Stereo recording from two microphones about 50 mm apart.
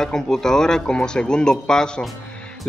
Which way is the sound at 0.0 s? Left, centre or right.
Centre.